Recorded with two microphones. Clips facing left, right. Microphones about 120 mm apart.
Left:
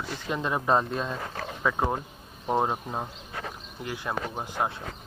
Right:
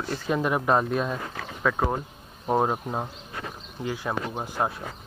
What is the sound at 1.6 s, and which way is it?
Speech, 10° left (ahead or behind).